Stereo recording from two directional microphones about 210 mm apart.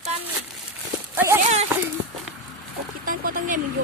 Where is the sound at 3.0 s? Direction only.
45° right (ahead or behind).